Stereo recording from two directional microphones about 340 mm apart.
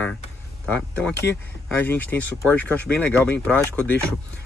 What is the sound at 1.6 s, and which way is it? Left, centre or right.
Speech, centre.